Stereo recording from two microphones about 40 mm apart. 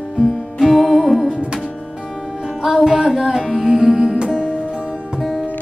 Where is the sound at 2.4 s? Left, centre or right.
Centre.